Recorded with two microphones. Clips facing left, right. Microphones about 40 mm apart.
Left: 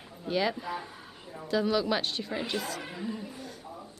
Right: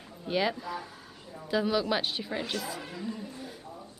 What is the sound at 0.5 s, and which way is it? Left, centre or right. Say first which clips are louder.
Speech: left 1 dB; centre.